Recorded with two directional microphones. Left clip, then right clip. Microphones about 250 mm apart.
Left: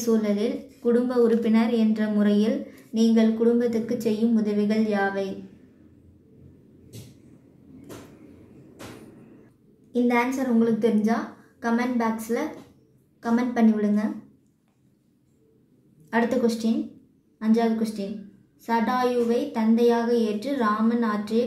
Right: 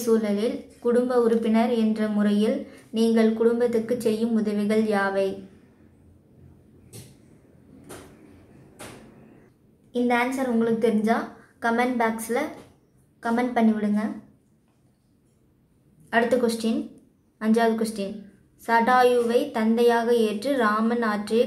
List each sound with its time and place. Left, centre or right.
0.0 s a woman's voice: right
10.0 s a woman's voice: right
16.1 s a woman's voice: right